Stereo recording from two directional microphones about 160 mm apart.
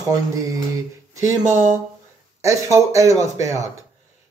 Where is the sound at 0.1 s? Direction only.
20° right (ahead or behind).